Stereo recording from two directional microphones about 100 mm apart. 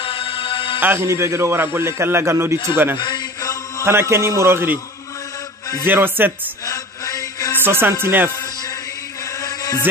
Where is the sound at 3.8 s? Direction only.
25° right (ahead or behind).